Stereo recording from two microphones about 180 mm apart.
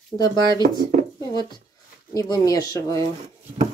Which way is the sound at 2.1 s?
20° left (ahead or behind).